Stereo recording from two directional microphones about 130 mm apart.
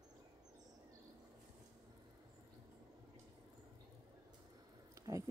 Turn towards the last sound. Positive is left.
turn(degrees=-25)  # may be behind; listen again after turning